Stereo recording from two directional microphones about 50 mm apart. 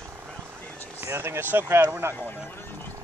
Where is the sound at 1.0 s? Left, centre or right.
Right.